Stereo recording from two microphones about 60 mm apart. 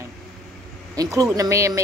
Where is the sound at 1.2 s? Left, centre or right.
Right.